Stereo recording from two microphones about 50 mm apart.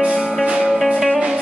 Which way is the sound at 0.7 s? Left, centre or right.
Centre.